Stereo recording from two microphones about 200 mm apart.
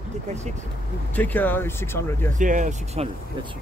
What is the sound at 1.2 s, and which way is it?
Speech, 10° left (ahead or behind).